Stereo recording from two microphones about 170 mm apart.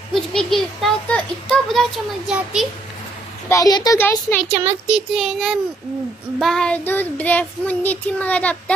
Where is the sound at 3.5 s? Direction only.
20° left (ahead or behind).